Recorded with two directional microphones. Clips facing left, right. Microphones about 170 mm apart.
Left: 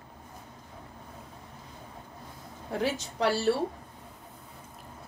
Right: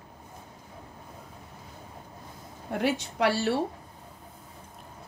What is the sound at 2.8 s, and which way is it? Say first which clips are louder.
Speech: right 3 dB; 60° right (ahead or behind).